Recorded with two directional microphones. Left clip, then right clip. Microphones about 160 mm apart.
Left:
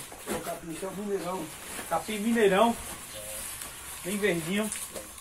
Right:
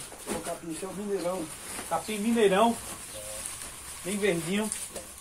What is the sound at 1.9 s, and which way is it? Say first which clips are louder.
Speech: even; 20° left (ahead or behind).